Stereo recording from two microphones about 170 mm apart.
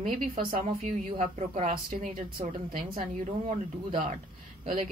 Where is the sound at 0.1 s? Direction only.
55° right (ahead or behind).